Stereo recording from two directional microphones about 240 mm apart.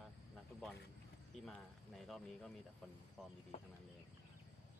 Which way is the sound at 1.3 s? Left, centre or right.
Centre.